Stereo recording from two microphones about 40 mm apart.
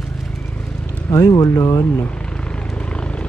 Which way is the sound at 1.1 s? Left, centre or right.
Left.